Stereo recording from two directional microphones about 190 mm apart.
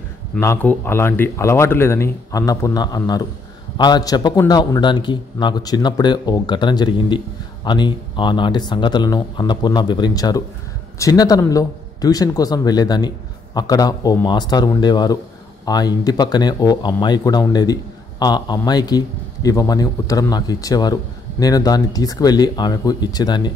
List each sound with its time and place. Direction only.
0.3 s a man's voice: 10° left (ahead or behind)